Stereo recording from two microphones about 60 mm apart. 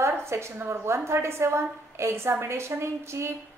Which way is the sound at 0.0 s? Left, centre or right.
Right.